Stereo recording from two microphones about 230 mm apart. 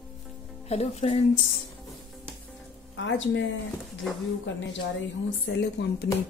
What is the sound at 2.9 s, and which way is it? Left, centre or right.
Speech, left.